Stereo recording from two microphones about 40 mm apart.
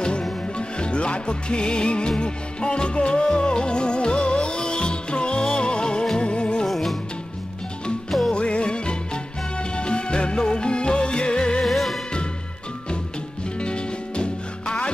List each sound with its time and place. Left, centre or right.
0.6 s music: left
6.7 s music: centre
8.3 s music: left
11.6 s music: centre
13.6 s music: left